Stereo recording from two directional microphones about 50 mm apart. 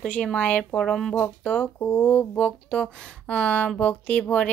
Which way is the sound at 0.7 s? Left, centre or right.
Centre.